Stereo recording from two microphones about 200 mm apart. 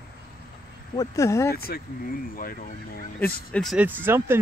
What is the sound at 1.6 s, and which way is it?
Speech, 45° left (ahead or behind).